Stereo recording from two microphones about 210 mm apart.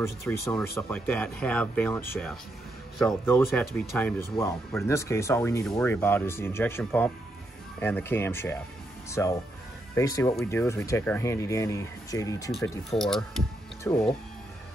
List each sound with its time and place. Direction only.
0.3 s speech: 5° left (ahead or behind)
12.9 s speech: centre (ahead or behind)